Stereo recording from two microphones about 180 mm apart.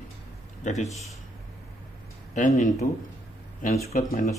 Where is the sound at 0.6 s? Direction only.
40° left (ahead or behind).